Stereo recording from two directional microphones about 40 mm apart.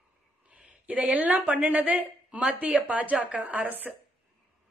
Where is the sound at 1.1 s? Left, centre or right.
Right.